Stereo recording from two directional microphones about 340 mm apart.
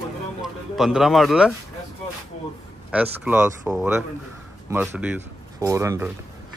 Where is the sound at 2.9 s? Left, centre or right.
Centre.